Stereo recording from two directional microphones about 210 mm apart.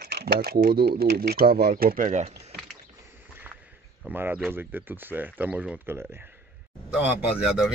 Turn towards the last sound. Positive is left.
turn(degrees=-5)  # may be behind; listen again after turning